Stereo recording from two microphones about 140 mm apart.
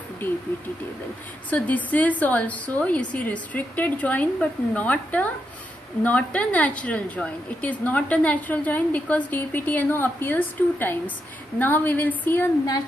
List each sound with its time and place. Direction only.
1.5 s a woman's voice: 10° left (ahead or behind)